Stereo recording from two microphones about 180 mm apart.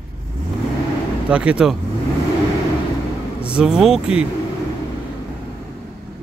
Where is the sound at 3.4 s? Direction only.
5° right (ahead or behind).